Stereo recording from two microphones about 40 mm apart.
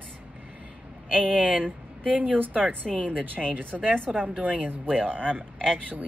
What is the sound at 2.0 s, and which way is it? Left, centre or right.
Speech, right.